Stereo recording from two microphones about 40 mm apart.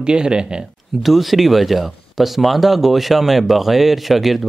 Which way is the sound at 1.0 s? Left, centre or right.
Centre.